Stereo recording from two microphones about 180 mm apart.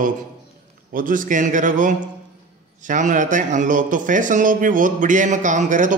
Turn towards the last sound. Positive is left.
turn(degrees=-45)  # may be behind; listen again after turning